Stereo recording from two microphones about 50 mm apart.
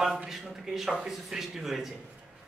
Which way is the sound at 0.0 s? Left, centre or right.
Centre.